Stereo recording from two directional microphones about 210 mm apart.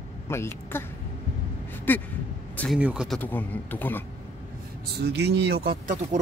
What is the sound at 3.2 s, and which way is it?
Speech, 10° left (ahead or behind).